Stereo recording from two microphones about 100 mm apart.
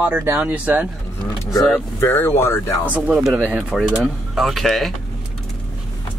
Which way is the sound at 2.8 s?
15° right (ahead or behind).